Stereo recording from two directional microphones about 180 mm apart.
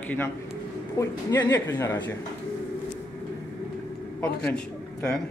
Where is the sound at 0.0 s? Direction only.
10° left (ahead or behind).